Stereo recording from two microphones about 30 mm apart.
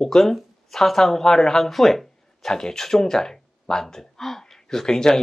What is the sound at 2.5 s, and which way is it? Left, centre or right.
Speech, centre.